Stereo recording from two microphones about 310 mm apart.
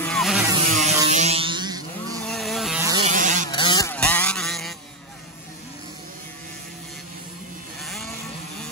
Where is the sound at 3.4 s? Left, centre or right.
Centre.